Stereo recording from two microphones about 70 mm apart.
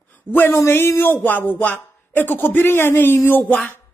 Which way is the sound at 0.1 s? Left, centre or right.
Left.